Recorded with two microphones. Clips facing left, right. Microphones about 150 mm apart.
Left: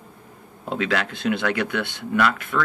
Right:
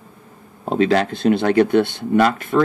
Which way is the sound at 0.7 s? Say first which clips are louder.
Right 8 dB; 35° right (ahead or behind).